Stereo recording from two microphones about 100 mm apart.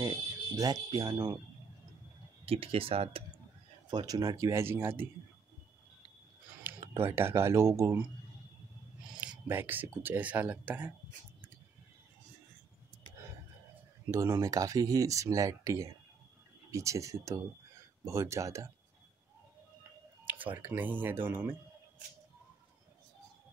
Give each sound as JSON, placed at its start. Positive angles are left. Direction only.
{"t": 0.0, "sound": "a sound", "side_deg": -35}
{"t": 0.8, "sound": "speech", "side_deg": -40}
{"t": 2.4, "sound": "speech", "side_deg": -75}
{"t": 3.9, "sound": "speech", "side_deg": -40}
{"t": 6.9, "sound": "speech", "side_deg": -25}
{"t": 9.1, "sound": "a sound", "side_deg": -10}
{"t": 9.5, "sound": "speech", "side_deg": -20}
{"t": 14.1, "sound": "speech", "side_deg": -30}
{"t": 20.5, "sound": "speech", "side_deg": -20}